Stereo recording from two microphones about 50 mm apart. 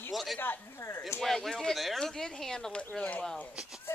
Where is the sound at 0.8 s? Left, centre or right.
Left.